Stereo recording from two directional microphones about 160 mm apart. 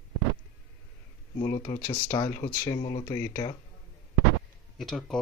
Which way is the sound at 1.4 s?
20° left (ahead or behind).